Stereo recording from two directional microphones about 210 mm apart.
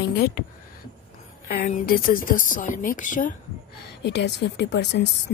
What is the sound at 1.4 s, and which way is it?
A woman's voice, 40° left (ahead or behind).